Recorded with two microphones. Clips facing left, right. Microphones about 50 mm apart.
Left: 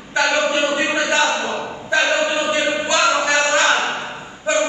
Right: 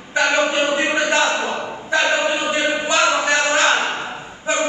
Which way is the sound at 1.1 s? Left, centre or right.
Right.